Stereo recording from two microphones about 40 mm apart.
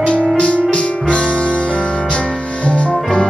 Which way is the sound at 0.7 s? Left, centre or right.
Left.